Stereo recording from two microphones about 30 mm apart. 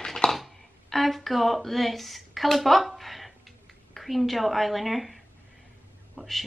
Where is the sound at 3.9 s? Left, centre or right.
Centre.